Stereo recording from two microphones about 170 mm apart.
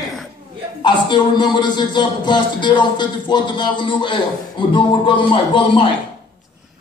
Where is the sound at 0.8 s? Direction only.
25° left (ahead or behind).